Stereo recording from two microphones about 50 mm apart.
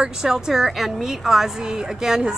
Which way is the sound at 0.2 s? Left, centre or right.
Centre.